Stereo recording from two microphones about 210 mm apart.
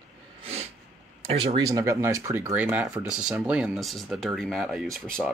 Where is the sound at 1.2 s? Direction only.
30° right (ahead or behind).